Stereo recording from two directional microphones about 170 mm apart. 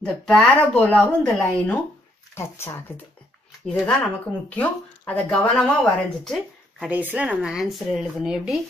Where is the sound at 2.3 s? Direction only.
15° left (ahead or behind).